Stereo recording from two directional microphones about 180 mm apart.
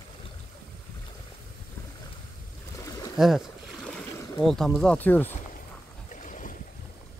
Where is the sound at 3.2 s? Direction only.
5° right (ahead or behind).